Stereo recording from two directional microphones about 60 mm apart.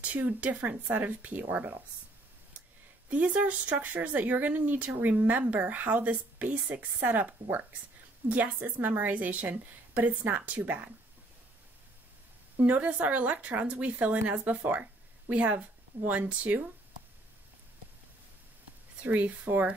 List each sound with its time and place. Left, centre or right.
0.0 s speech: right
3.1 s speech: right
12.5 s speech: right
18.9 s speech: right